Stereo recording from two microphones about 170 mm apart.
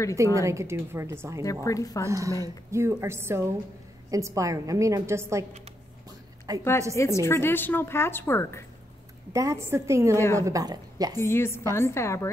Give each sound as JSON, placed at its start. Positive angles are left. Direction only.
{"t": 0.1, "sound": "a woman's voice", "side_deg": -20}
{"t": 1.4, "sound": "a woman's voice", "side_deg": 20}
{"t": 2.0, "sound": "a woman's voice", "side_deg": -20}
{"t": 6.5, "sound": "a woman's voice", "side_deg": -20}
{"t": 7.0, "sound": "a woman's voice", "side_deg": 15}
{"t": 9.3, "sound": "a woman's voice", "side_deg": -15}
{"t": 10.1, "sound": "a woman's voice", "side_deg": 15}
{"t": 10.4, "sound": "a woman's voice", "side_deg": -20}
{"t": 11.1, "sound": "a woman's voice", "side_deg": 15}